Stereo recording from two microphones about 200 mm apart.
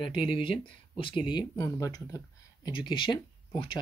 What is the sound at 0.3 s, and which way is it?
Speech, 25° left (ahead or behind).